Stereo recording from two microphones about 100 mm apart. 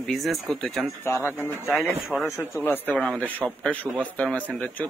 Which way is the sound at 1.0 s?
25° left (ahead or behind).